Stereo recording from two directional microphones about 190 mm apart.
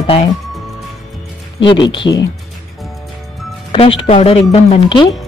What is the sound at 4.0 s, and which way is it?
Speech, 30° left (ahead or behind).